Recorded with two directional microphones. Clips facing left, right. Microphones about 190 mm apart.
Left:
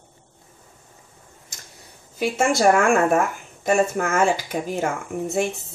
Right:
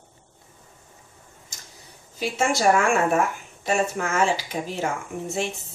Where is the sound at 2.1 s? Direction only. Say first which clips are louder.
Left 3 dB; 50° left (ahead or behind).